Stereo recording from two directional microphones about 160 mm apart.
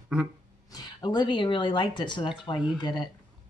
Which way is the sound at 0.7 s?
25° left (ahead or behind).